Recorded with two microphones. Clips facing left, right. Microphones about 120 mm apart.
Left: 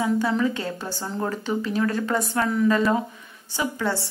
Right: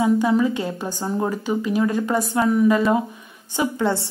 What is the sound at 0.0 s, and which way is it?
A woman's voice, 15° right (ahead or behind).